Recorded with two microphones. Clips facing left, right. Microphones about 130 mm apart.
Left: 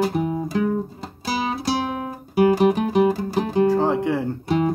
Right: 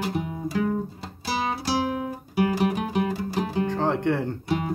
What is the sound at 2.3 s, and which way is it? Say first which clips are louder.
Music: left 7 dB; 45° left (ahead or behind).